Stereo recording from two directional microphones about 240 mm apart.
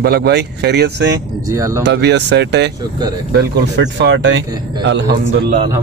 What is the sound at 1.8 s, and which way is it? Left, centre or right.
A man's voice, right.